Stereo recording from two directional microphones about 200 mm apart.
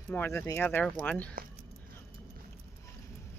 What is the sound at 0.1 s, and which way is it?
Speech, 10° left (ahead or behind).